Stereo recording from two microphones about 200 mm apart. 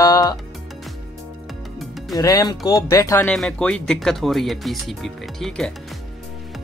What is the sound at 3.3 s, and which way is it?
Speech, 5° left (ahead or behind).